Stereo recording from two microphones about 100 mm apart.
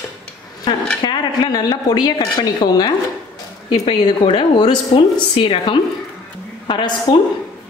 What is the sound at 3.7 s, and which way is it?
Speech, 65° left (ahead or behind).